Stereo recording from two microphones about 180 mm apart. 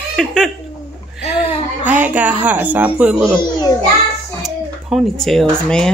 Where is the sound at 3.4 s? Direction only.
20° left (ahead or behind).